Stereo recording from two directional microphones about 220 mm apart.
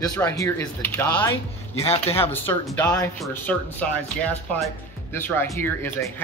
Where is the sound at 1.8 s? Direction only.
25° left (ahead or behind).